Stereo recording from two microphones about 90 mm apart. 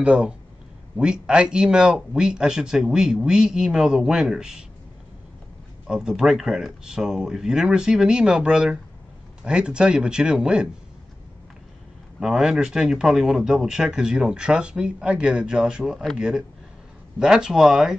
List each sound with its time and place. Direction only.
0.0 s speech: 10° right (ahead or behind)
5.9 s speech: 5° right (ahead or behind)
12.2 s speech: 5° right (ahead or behind)